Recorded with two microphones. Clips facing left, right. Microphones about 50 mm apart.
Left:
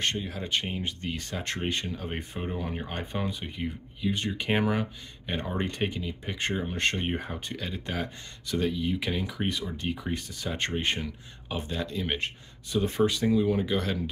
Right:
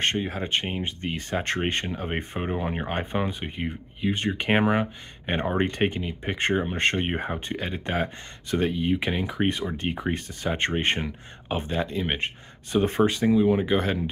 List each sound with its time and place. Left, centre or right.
0.0 s speech: right
13.3 s speech: right